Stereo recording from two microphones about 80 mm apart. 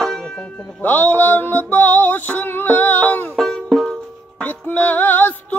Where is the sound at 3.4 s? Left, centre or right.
Centre.